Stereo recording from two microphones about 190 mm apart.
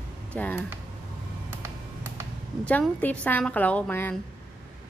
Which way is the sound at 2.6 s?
5° left (ahead or behind).